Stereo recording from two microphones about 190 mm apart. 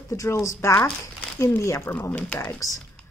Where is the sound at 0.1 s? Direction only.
15° left (ahead or behind).